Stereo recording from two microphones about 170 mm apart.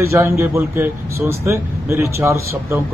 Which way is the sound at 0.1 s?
15° right (ahead or behind).